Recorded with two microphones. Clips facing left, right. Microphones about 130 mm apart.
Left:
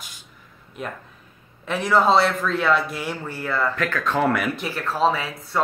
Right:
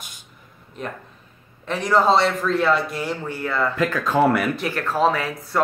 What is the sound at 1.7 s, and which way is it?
Speech, 5° left (ahead or behind).